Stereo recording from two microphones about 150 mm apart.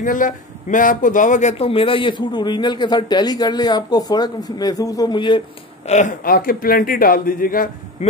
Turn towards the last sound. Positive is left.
turn(degrees=70)  # may be behind; listen again after turning